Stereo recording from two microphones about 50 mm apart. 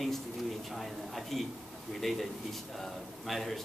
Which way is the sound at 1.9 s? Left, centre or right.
Centre.